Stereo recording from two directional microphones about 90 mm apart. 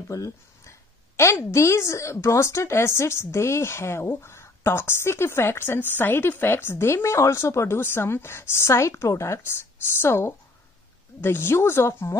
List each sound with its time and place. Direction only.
0.1 s a woman's voice: 35° left (ahead or behind)